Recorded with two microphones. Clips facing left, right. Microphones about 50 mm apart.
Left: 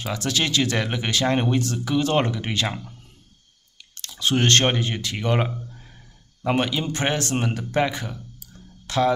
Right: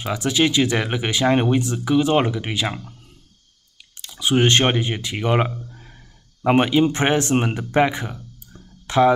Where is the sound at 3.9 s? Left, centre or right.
Centre.